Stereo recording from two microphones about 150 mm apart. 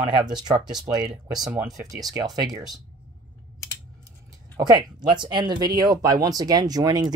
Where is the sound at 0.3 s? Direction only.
30° right (ahead or behind).